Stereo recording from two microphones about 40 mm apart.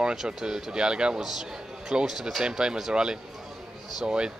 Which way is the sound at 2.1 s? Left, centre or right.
Centre.